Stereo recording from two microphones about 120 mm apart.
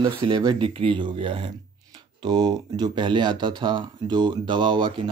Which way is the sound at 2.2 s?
35° right (ahead or behind).